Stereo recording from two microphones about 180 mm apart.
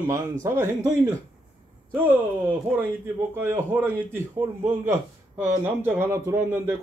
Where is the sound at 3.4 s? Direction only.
15° right (ahead or behind).